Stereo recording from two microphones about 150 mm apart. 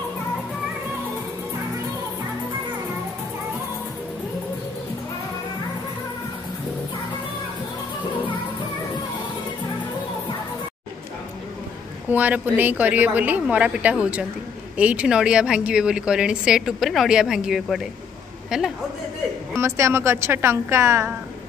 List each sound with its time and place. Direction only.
12.1 s a woman's voice: 10° right (ahead or behind)
19.5 s a woman's voice: 15° right (ahead or behind)